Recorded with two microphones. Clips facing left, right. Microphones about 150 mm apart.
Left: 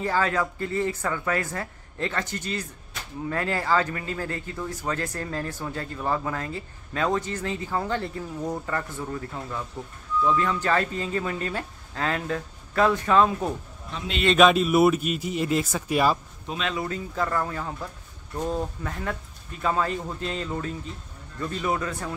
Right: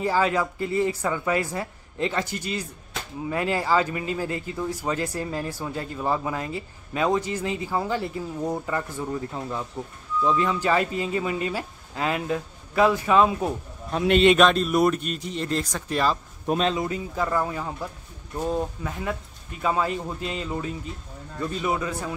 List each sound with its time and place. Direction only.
0.0 s a man's voice: 15° right (ahead or behind)
13.8 s a man's voice: 50° right (ahead or behind)
14.3 s speech: 5° left (ahead or behind)
16.7 s a man's voice: 15° right (ahead or behind)